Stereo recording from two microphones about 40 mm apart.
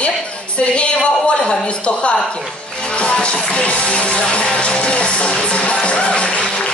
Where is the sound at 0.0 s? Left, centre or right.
Left.